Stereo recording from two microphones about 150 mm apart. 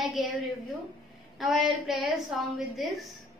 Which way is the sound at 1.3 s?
Centre (ahead or behind).